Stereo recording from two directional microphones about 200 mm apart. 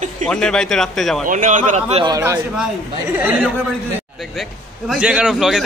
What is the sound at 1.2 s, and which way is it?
Speech, 40° right (ahead or behind).